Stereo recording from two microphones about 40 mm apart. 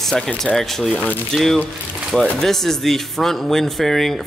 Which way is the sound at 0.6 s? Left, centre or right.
Centre.